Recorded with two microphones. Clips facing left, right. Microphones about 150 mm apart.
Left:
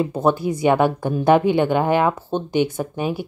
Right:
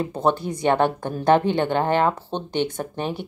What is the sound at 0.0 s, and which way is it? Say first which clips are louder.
A woman's voice: left 3 dB; 10° left (ahead or behind).